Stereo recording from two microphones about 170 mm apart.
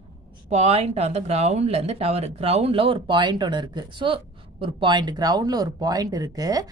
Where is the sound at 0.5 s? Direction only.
40° right (ahead or behind).